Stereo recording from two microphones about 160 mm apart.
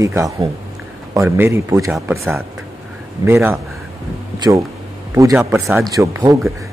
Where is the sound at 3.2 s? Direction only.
15° right (ahead or behind).